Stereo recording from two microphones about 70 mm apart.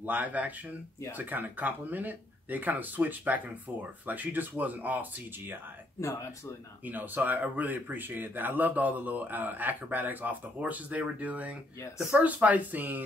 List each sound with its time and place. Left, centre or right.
0.0 s speech: right
6.9 s speech: right